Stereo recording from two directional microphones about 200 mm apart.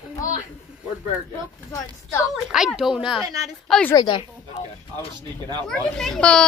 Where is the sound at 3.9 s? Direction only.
20° left (ahead or behind).